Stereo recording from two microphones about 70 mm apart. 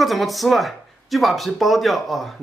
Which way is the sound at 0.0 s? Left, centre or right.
Centre.